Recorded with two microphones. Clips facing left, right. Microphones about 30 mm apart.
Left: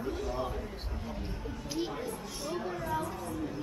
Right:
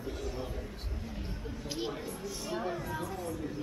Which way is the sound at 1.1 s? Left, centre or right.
Centre.